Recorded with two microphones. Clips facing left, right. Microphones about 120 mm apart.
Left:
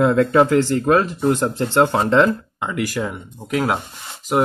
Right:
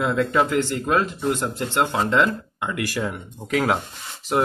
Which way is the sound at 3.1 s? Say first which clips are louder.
Left 1 dB; 5° left (ahead or behind).